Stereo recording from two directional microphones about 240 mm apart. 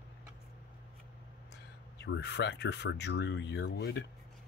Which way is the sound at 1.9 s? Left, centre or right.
Left.